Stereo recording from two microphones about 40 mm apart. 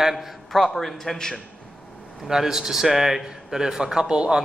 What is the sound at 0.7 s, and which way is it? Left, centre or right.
Speech, centre.